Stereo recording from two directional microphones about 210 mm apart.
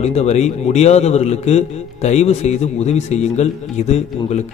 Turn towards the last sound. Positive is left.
turn(degrees=35)  # may be behind; listen again after turning